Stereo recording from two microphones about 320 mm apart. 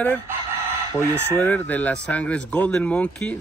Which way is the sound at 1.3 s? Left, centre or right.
Centre.